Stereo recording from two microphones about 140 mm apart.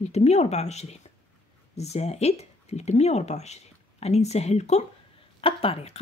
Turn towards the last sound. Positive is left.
turn(degrees=45)  # may be behind; listen again after turning